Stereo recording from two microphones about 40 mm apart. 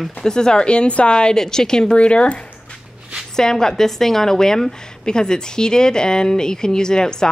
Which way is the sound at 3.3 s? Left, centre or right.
Centre.